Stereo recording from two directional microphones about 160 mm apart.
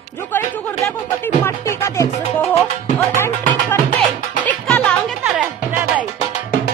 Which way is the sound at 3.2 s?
15° left (ahead or behind).